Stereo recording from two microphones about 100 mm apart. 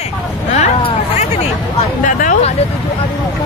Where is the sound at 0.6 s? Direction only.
90° left.